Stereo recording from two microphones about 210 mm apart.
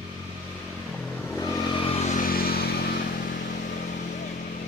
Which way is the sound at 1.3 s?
15° left (ahead or behind).